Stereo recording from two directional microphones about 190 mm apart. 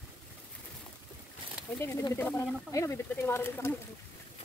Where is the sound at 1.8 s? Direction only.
15° left (ahead or behind).